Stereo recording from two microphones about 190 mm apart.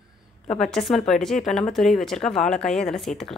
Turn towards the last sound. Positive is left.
turn(degrees=0)  # may be behind; listen again after turning